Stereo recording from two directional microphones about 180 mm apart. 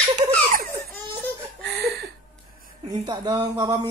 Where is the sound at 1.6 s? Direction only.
65° right (ahead or behind).